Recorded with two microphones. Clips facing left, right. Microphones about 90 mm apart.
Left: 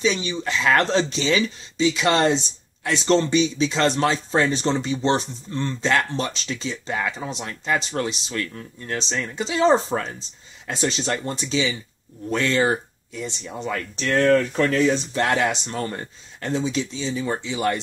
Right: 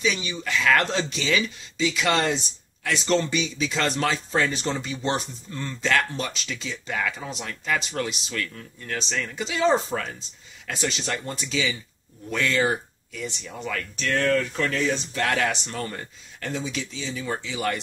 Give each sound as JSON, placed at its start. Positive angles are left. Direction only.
{"t": 0.0, "sound": "speech", "side_deg": 30}